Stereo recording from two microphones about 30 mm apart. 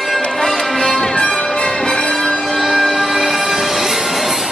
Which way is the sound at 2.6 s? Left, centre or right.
Centre.